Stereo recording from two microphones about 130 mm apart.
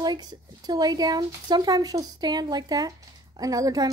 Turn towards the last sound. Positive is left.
turn(degrees=-30)  # may be behind; listen again after turning